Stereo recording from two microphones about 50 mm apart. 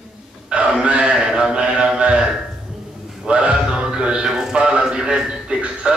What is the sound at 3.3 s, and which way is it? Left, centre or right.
Music, right.